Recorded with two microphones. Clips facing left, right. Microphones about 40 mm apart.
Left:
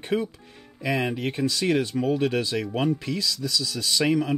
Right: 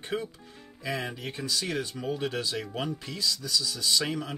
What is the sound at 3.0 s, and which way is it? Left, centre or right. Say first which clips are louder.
Speech: left 5 dB; left.